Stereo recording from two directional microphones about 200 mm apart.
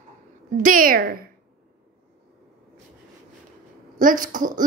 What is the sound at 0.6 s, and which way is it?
Speech, 45° right (ahead or behind).